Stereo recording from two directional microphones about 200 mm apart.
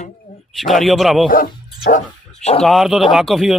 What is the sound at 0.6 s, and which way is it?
Speech, centre (ahead or behind).